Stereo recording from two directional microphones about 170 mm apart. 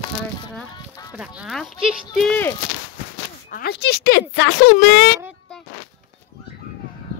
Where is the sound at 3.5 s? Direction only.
70° left (ahead or behind).